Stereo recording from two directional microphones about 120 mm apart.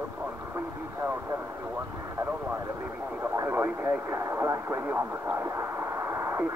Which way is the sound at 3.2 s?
20° right (ahead or behind).